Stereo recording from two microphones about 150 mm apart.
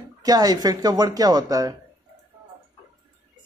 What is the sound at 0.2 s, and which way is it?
A man's voice, 25° right (ahead or behind).